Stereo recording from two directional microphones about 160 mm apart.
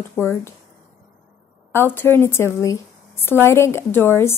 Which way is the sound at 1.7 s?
15° left (ahead or behind).